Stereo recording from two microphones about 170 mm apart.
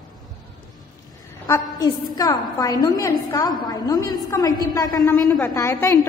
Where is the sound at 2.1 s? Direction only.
20° left (ahead or behind).